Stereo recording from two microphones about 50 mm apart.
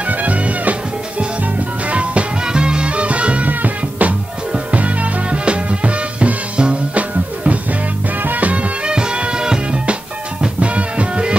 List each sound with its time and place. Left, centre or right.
0.2 s music: right
1.9 s music: right
8.8 s music: centre